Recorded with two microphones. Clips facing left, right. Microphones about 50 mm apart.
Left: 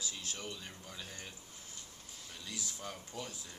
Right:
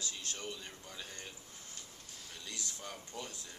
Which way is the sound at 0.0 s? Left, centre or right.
Centre.